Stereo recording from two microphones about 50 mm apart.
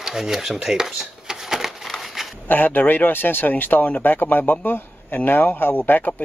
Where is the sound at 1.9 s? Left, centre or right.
Centre.